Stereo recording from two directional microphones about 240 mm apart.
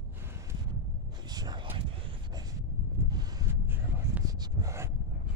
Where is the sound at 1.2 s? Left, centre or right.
Centre.